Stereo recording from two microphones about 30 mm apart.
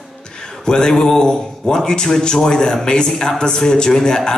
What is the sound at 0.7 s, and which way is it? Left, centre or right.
A man's voice, left.